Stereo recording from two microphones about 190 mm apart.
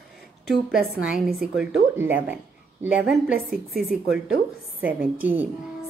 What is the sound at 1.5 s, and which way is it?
A woman's voice, 5° right (ahead or behind).